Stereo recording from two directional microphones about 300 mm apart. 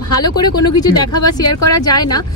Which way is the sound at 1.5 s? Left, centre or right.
Left.